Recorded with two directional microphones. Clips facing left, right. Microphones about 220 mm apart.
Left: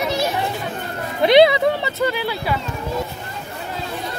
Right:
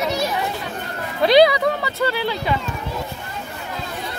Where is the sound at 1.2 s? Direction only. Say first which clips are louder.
Left 1 dB; 25° left (ahead or behind).